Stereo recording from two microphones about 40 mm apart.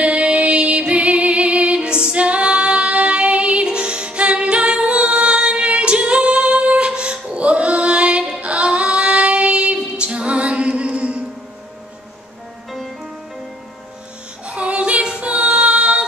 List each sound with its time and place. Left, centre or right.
0.0 s music: right
3.6 s a capella: right
8.4 s female singing: right
14.4 s female singing: right